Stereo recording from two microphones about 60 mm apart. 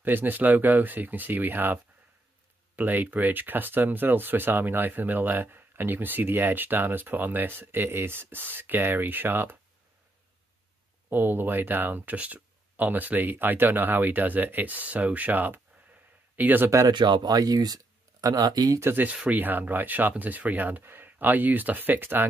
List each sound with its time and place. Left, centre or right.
0.0 s speech: right
11.1 s speech: right
17.4 s speech: right
18.8 s speech: right
19.2 s rub: right
20.8 s speech: right